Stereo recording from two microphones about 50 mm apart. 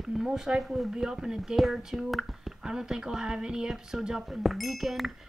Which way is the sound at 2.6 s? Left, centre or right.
Centre.